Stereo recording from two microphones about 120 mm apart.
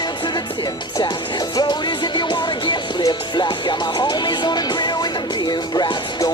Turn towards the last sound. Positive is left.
turn(degrees=35)  # may be behind; listen again after turning